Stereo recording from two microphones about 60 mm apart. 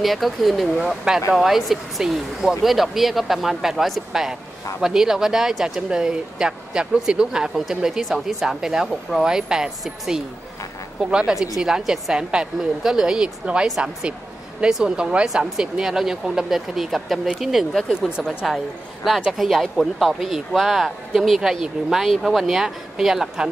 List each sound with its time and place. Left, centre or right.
0.0 s speech: centre
19.2 s speech: centre